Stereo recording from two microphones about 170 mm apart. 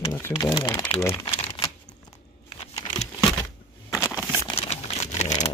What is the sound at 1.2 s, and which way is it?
Crumpling, 35° left (ahead or behind).